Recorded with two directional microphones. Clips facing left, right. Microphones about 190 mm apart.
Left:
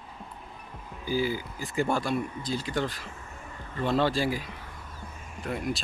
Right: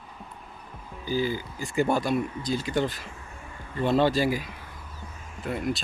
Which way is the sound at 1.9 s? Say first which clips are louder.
Right 3 dB; 20° right (ahead or behind).